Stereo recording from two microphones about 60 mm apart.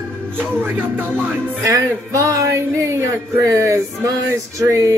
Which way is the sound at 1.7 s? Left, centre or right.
Right.